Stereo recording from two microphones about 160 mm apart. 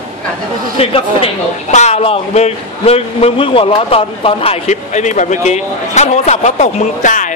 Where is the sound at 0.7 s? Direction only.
35° left (ahead or behind).